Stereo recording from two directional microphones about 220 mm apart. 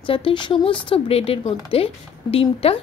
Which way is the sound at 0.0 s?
25° left (ahead or behind).